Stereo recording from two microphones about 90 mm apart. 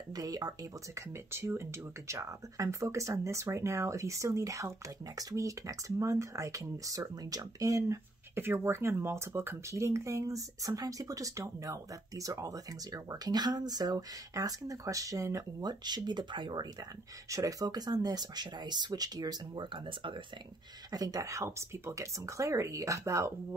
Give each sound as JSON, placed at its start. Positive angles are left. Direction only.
{"t": 0.1, "sound": "speech", "side_deg": -45}
{"t": 1.3, "sound": "speech", "side_deg": -30}
{"t": 8.4, "sound": "speech", "side_deg": -25}
{"t": 17.3, "sound": "speech", "side_deg": -40}
{"t": 19.6, "sound": "speech", "side_deg": -65}
{"t": 20.9, "sound": "speech", "side_deg": -40}